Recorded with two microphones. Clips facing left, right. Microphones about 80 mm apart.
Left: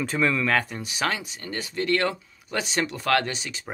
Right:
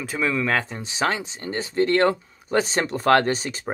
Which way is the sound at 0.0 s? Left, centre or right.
Centre.